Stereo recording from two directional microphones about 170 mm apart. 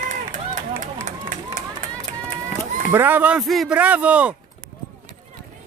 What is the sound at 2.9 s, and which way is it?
A man's voice, 10° right (ahead or behind).